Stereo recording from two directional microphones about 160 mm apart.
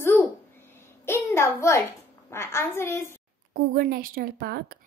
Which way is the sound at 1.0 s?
15° left (ahead or behind).